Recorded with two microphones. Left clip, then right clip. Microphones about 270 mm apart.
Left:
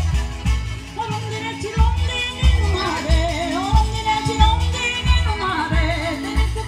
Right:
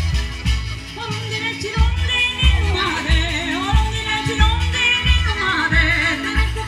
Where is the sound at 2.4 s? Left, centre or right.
Centre.